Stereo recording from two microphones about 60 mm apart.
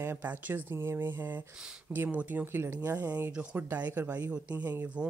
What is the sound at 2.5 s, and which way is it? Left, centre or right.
Speech, right.